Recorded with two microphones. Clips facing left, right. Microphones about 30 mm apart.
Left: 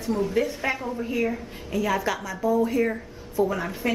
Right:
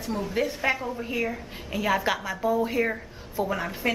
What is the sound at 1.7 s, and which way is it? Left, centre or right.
A woman's voice, centre.